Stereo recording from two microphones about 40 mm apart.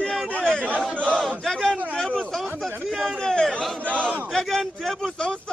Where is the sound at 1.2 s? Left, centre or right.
Centre.